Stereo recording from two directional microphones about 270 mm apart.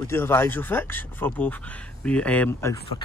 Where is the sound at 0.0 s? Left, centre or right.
Centre.